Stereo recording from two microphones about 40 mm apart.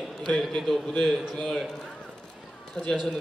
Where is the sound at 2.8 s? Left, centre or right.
Centre.